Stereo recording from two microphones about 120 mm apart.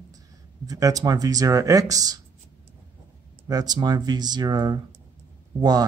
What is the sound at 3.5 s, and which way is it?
Speech, 35° right (ahead or behind).